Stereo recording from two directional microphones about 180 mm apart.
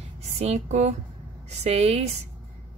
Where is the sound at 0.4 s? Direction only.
40° right (ahead or behind).